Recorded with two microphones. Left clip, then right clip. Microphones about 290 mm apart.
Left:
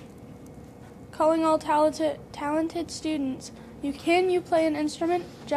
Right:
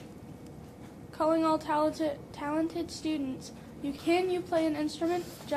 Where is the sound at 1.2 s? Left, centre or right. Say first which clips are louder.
Left 5 dB; left.